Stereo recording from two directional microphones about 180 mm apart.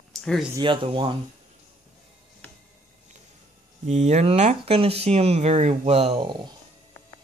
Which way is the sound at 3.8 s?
40° right (ahead or behind).